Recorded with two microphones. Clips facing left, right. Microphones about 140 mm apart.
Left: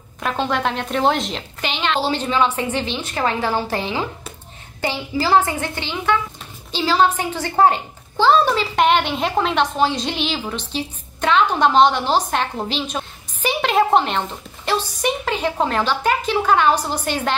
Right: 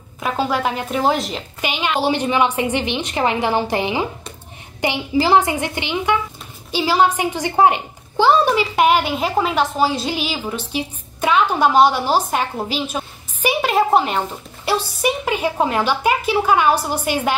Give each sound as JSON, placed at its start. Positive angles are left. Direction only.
{"t": 0.2, "sound": "a woman's voice", "side_deg": -5}